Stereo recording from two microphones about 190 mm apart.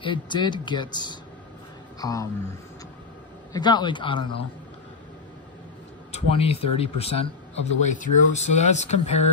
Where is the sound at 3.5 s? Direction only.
20° left (ahead or behind).